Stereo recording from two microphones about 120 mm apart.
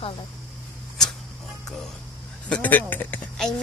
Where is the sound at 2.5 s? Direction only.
15° left (ahead or behind).